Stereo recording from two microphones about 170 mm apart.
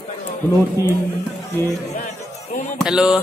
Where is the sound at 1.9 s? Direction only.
45° left (ahead or behind).